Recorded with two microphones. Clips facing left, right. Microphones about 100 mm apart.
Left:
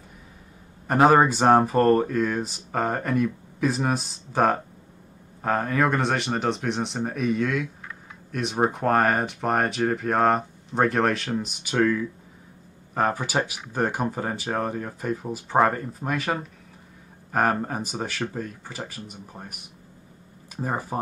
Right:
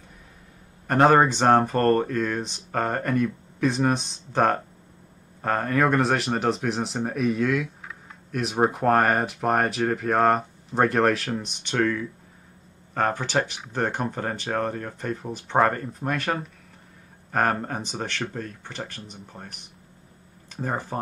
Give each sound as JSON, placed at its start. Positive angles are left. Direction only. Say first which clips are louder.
{"t": 0.8, "sound": "speech", "louder": "even", "side_deg": 5}